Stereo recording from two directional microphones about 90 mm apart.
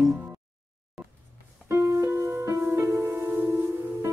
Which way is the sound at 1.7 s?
35° right (ahead or behind).